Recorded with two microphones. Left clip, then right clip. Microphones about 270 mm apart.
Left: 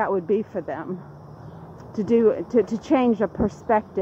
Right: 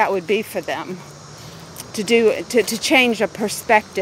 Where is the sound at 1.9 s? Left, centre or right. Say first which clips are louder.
Right 3 dB; right.